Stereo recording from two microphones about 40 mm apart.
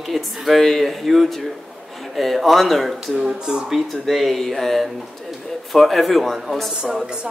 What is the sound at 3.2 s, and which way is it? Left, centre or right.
Speech, centre.